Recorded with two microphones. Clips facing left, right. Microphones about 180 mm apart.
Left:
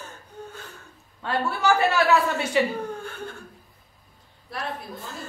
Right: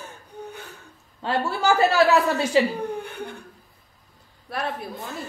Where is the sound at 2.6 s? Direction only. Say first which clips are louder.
Right 3 dB; 30° right (ahead or behind).